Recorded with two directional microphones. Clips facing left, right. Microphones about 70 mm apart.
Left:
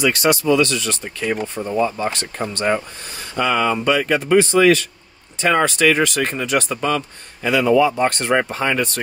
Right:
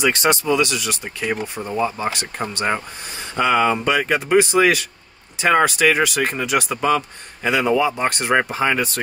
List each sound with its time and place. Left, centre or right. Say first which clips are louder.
0.0 s speech: left 1 dB; right
0.6 s speech: left 2 dB; centre